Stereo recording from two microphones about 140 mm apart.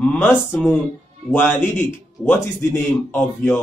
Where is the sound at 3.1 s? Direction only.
10° left (ahead or behind).